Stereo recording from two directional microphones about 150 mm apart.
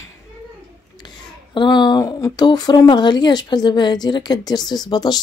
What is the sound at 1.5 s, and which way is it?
Speech, 30° left (ahead or behind).